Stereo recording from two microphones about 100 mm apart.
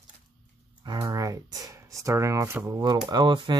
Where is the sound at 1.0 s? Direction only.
35° right (ahead or behind).